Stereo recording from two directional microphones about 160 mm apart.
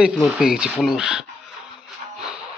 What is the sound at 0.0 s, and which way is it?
Speech, 5° right (ahead or behind).